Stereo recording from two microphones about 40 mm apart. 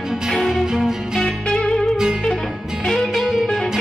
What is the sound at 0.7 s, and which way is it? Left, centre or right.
Music, centre.